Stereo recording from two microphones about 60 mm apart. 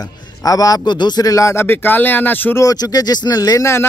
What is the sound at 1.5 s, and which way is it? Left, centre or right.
Speech, left.